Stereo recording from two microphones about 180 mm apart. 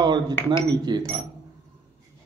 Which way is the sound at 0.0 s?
25° right (ahead or behind).